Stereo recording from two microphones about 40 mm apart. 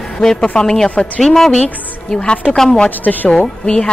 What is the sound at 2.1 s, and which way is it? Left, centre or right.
A woman's voice, left.